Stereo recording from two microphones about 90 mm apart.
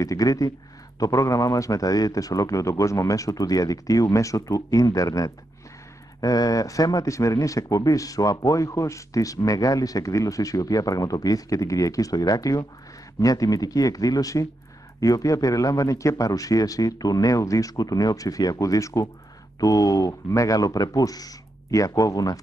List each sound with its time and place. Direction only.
0.0 s speech: 40° left (ahead or behind)